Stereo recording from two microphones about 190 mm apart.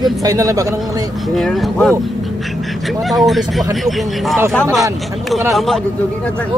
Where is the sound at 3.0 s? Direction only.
Centre (ahead or behind).